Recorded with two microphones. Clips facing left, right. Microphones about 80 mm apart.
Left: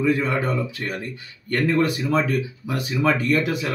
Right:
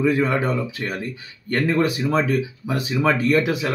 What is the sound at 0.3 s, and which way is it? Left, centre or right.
Speech, centre.